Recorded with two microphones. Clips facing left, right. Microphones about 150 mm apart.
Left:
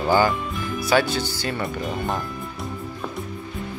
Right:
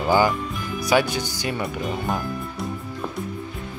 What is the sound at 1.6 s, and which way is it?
Speech, centre (ahead or behind).